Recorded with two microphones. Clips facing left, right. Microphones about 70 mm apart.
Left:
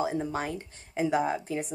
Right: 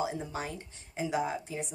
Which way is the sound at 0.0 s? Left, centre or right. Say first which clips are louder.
Left 5 dB; left.